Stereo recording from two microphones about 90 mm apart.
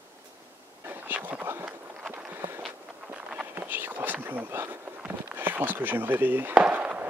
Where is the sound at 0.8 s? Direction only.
20° right (ahead or behind).